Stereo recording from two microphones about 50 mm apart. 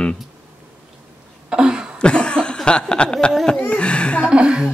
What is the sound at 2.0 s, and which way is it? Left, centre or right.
Cough, centre.